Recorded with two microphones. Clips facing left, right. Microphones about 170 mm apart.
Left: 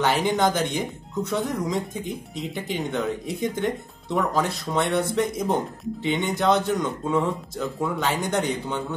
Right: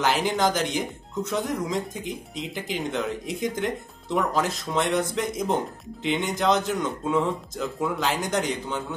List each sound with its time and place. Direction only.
0.0 s speech: centre (ahead or behind)